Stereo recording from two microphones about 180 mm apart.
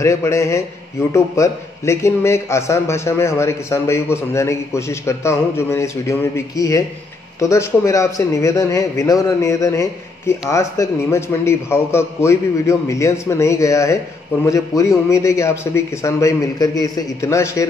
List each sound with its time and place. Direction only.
0.0 s speech: 15° left (ahead or behind)